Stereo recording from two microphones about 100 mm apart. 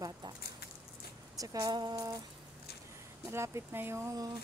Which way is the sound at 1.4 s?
40° right (ahead or behind).